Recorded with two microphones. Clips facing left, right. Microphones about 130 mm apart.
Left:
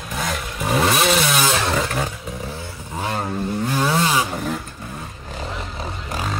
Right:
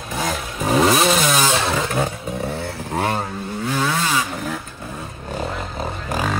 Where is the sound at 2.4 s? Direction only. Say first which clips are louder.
Right 6 dB; 65° right (ahead or behind).